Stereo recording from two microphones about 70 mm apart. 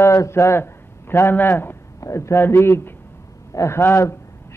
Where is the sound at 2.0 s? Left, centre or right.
Left.